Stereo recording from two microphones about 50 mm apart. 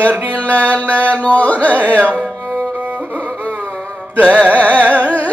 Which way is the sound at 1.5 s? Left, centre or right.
Right.